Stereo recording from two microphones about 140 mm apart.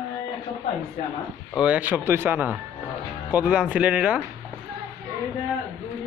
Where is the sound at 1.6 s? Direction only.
10° right (ahead or behind).